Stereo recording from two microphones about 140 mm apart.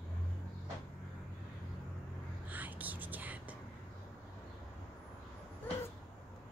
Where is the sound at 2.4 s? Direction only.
10° right (ahead or behind).